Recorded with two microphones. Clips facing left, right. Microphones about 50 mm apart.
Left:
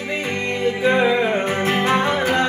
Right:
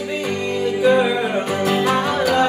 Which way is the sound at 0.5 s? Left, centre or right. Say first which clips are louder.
Right 3 dB; left.